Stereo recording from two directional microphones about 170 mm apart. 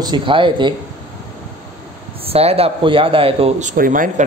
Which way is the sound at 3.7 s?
50° right (ahead or behind).